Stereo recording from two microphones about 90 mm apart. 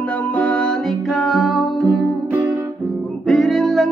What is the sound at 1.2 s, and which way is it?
Music, centre (ahead or behind).